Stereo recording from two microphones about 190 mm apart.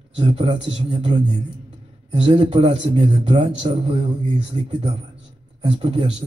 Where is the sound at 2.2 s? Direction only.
30° right (ahead or behind).